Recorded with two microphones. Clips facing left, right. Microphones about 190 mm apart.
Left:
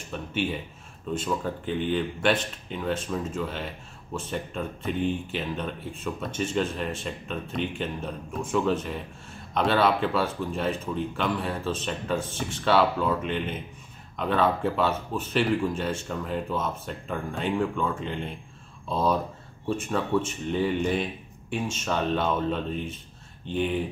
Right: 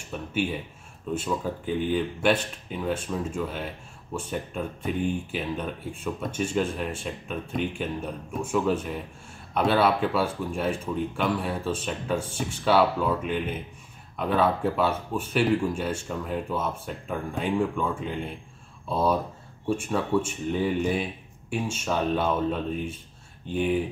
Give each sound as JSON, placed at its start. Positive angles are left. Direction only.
{"t": 0.1, "sound": "speech", "side_deg": -10}